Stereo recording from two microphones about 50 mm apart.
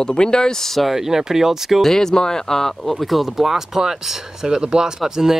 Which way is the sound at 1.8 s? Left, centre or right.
Centre.